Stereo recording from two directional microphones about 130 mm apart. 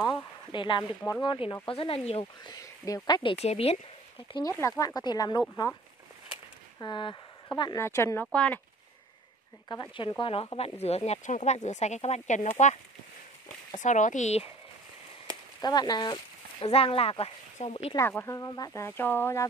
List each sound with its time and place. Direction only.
0.0 s speech: 35° left (ahead or behind)
2.4 s speech: 25° left (ahead or behind)
3.3 s speech: 55° left (ahead or behind)
4.3 s speech: 25° left (ahead or behind)
6.8 s speech: 35° left (ahead or behind)
7.8 s speech: 20° left (ahead or behind)
8.3 s speech: 10° left (ahead or behind)
9.7 s speech: 35° left (ahead or behind); by 12.7 s 70° left (ahead or behind)
13.7 s speech: 70° left (ahead or behind)
15.6 s speech: 30° left (ahead or behind)
16.6 s speech: 50° left (ahead or behind)
17.9 s speech: 20° left (ahead or behind)